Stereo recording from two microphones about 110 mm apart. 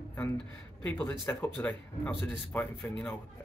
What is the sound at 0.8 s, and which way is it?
Speech, 15° left (ahead or behind).